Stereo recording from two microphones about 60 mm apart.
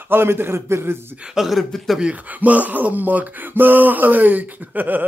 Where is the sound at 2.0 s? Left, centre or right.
Right.